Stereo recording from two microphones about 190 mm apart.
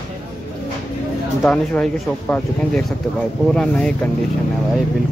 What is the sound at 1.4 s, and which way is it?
Speech, centre (ahead or behind).